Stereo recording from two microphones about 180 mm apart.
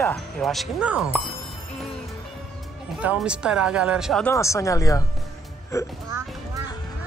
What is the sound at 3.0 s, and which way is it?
Speech, 5° right (ahead or behind).